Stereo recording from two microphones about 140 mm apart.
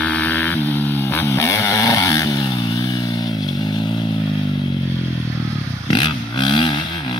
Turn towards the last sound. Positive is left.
turn(degrees=35)  # may be behind; listen again after turning